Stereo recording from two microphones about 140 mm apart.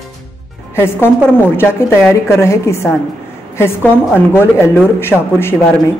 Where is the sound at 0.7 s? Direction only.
15° left (ahead or behind).